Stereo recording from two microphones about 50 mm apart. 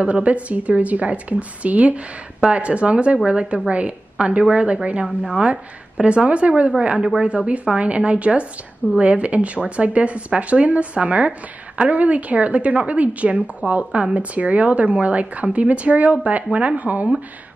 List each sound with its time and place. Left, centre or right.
0.0 s speech: right
5.0 s a woman's voice: centre
5.9 s speech: right